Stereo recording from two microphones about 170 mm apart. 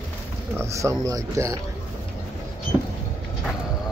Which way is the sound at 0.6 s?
15° right (ahead or behind).